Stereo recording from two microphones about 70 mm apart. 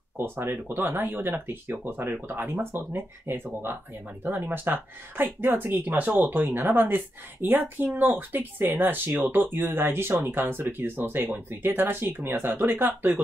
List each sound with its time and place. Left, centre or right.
0.2 s speech: right